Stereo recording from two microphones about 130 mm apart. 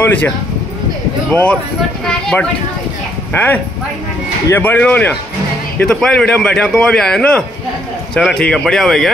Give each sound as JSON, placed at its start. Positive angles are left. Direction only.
{"t": 0.0, "sound": "speech", "side_deg": 15}
{"t": 1.3, "sound": "a man's voice", "side_deg": 10}
{"t": 3.3, "sound": "a man's voice", "side_deg": 15}